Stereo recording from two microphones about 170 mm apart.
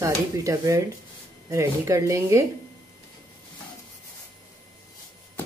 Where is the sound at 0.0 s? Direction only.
20° right (ahead or behind).